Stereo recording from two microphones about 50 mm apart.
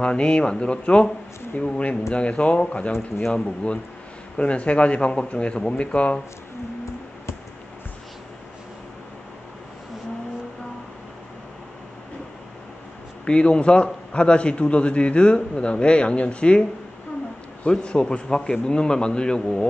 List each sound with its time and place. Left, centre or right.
0.0 s a man's voice: centre
13.2 s a man's voice: left
17.6 s a man's voice: centre